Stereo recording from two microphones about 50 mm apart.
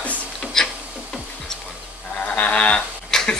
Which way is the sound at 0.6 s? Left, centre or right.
Centre.